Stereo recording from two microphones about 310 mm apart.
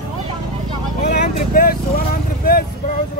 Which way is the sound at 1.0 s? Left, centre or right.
Left.